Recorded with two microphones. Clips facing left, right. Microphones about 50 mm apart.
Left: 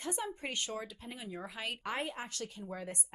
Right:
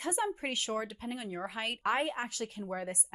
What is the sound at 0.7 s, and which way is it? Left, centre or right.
Speech, right.